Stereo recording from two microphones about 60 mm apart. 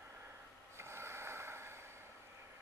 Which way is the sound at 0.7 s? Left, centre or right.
Right.